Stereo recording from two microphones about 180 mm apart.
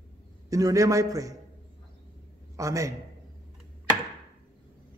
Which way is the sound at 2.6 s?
15° right (ahead or behind).